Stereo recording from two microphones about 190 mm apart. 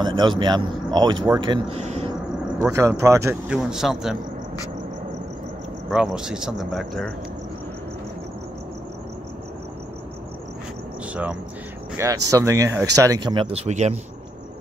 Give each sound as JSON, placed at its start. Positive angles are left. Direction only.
{"t": 0.0, "sound": "speech", "side_deg": -25}
{"t": 2.6, "sound": "speech", "side_deg": -10}
{"t": 3.5, "sound": "speech", "side_deg": 0}
{"t": 5.9, "sound": "speech", "side_deg": -5}
{"t": 12.0, "sound": "speech", "side_deg": -15}